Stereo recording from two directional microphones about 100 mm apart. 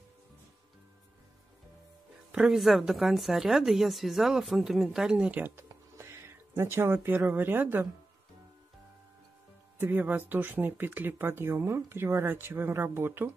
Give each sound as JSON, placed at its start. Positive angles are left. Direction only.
{"t": 2.3, "sound": "speech", "side_deg": -5}
{"t": 5.7, "sound": "a sound", "side_deg": -25}
{"t": 9.8, "sound": "speech", "side_deg": -20}